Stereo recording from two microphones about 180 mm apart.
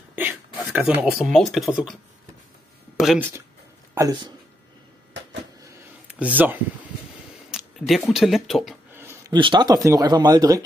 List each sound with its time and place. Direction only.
0.1 s speech: 10° right (ahead or behind)
3.0 s speech: 5° right (ahead or behind)
6.0 s speech: 5° right (ahead or behind)
7.5 s a sound: centre (ahead or behind)
8.1 s speech: centre (ahead or behind)
9.3 s speech: 25° right (ahead or behind)